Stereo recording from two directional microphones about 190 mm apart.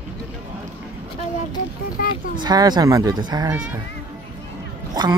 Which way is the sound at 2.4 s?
20° right (ahead or behind).